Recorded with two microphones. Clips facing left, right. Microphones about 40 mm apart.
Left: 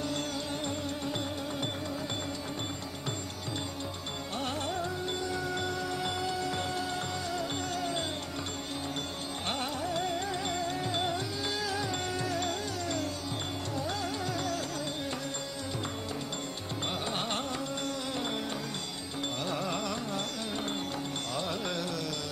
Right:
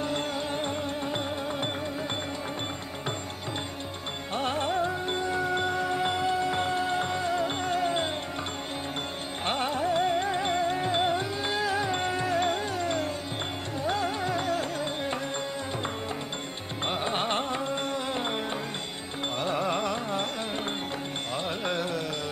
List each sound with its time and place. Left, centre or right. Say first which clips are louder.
0.7 s music: right 4 dB; right
4.4 s music: right 7 dB; right
9.5 s music: right 7 dB; right
17.0 s carnatic music: right 5 dB; right
19.4 s carnatic music: right 7 dB; right
21.5 s carnatic music: right 4 dB; right